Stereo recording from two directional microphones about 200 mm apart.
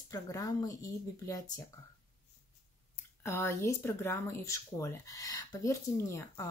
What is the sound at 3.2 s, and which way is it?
Speech, 10° left (ahead or behind).